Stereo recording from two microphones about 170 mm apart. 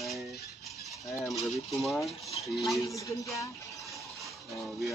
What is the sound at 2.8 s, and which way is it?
Speech, 20° left (ahead or behind).